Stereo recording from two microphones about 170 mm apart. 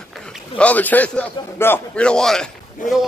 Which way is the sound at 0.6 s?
10° left (ahead or behind).